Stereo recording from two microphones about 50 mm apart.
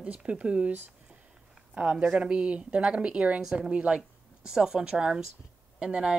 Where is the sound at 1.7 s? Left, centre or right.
Right.